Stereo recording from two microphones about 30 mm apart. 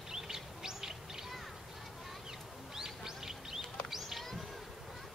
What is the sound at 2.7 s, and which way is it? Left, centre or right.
Bird, centre.